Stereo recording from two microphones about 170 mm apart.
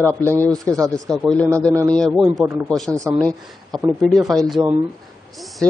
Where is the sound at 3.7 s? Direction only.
15° right (ahead or behind).